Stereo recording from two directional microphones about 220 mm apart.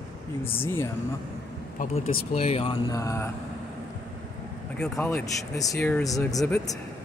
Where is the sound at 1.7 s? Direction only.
35° left (ahead or behind); by 3.3 s 15° left (ahead or behind).